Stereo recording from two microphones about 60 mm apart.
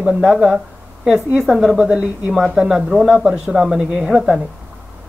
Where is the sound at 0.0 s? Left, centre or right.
Centre.